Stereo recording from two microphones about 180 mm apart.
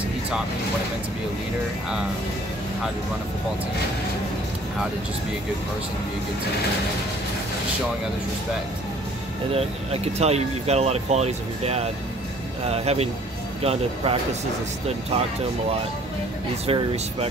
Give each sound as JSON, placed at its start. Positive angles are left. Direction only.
{"t": 10.1, "sound": "speech", "side_deg": -35}
{"t": 16.6, "sound": "speech", "side_deg": -35}